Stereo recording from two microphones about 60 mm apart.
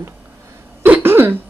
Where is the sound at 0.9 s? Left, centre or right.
Right.